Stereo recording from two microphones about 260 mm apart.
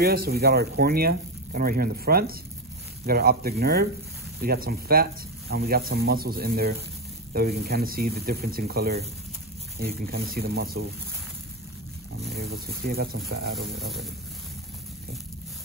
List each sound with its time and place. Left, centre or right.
0.0 s speech: right
12.3 s speech: right